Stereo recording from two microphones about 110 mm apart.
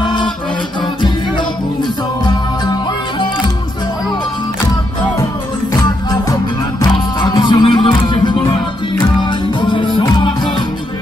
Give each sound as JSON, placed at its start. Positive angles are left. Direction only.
{"t": 0.0, "sound": "music", "side_deg": 45}
{"t": 2.2, "sound": "music", "side_deg": 45}
{"t": 6.8, "sound": "music", "side_deg": 40}